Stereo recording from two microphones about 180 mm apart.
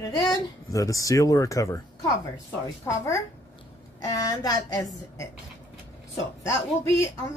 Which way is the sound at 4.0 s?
20° left (ahead or behind).